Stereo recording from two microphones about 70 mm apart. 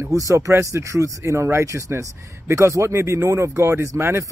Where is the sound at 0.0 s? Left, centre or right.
Right.